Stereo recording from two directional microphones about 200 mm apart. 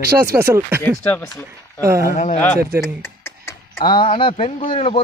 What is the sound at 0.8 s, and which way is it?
Speech, 10° left (ahead or behind).